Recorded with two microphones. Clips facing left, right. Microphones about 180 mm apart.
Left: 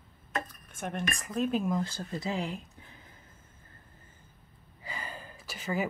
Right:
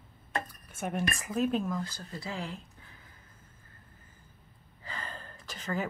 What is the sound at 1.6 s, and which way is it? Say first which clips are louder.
Speech: left 4 dB; 25° left (ahead or behind).